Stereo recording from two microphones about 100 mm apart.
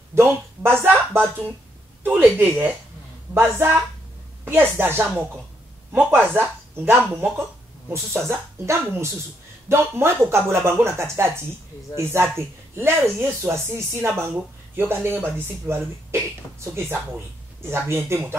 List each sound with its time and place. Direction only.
0.1 s a woman's voice: 25° right (ahead or behind)